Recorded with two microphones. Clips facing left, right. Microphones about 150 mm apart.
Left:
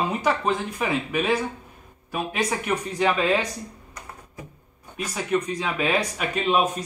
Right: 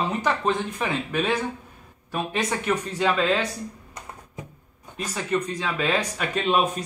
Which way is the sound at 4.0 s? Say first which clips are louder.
Even; 25° right (ahead or behind).